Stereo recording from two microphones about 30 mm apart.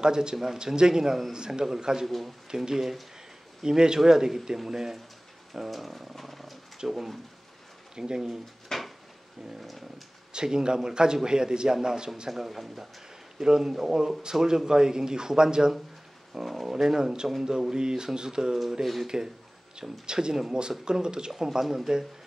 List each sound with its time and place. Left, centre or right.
0.0 s speech: right
2.0 s dog: centre
2.5 s speech: centre
5.5 s speech: centre
6.8 s speech: centre
8.7 s a sound: centre
9.6 s dog: centre
10.3 s speech: right
12.3 s speech: centre
13.4 s speech: right
21.5 s speech: centre